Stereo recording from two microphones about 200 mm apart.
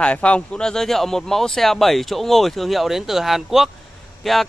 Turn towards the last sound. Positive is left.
turn(degrees=0)  # may be behind; listen again after turning